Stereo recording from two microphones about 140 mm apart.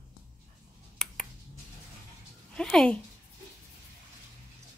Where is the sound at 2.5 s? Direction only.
5° left (ahead or behind).